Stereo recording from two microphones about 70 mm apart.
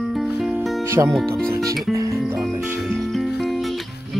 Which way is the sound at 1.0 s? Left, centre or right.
Right.